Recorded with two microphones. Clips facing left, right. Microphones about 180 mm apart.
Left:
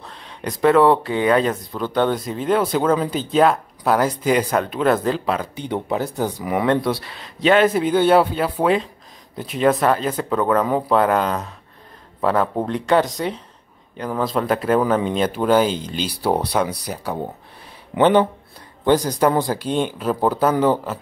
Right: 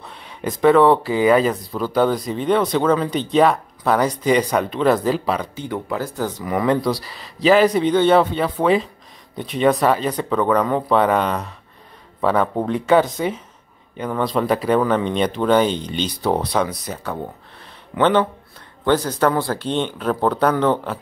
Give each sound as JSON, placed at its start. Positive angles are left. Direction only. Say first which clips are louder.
{"t": 0.0, "sound": "speech", "louder": "right 2 dB", "side_deg": -5}
{"t": 5.6, "sound": "speech", "louder": "left 2 dB", "side_deg": 20}